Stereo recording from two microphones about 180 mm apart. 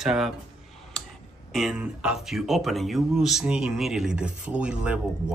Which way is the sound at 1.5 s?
5° right (ahead or behind).